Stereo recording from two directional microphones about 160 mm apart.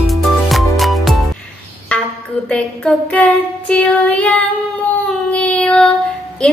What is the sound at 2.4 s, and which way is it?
Female singing, 5° left (ahead or behind).